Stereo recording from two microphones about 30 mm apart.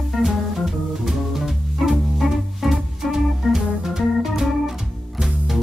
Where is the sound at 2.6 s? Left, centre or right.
Centre.